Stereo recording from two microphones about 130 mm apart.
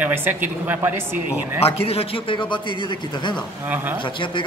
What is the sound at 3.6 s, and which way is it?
Speech, 15° right (ahead or behind).